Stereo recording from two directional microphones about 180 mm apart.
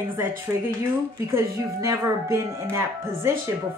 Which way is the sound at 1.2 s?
15° right (ahead or behind).